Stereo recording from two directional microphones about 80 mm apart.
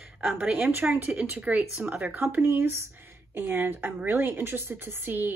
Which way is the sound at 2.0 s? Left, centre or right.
Right.